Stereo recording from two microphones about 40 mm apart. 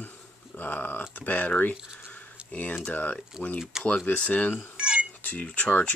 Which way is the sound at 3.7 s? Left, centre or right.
Centre.